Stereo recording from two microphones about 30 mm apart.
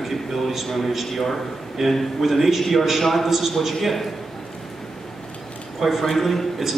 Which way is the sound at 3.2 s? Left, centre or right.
Centre.